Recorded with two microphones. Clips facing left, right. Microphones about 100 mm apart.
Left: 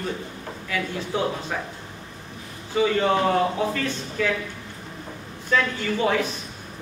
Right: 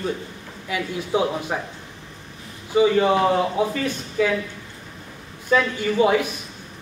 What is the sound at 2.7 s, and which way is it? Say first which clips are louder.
Speech: right 4 dB; 15° right (ahead or behind).